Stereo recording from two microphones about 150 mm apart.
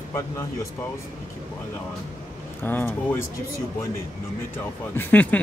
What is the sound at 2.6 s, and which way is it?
Speech, 15° left (ahead or behind).